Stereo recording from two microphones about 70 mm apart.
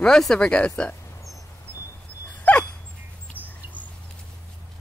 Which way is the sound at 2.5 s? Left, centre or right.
Left.